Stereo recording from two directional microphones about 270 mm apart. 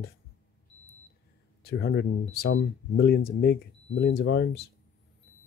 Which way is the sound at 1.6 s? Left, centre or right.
Left.